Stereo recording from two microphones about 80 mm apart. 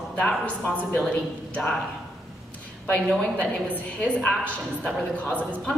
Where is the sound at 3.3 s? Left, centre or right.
Centre.